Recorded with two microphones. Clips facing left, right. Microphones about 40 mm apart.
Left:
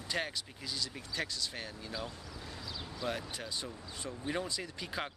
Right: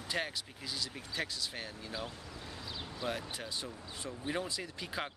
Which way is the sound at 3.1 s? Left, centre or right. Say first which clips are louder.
Even; centre.